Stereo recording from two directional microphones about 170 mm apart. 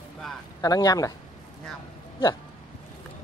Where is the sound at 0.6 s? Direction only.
20° left (ahead or behind).